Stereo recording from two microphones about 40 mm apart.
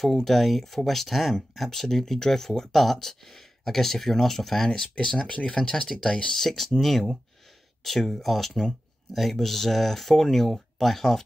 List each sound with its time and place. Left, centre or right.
0.0 s speech: centre
6.3 s speech: centre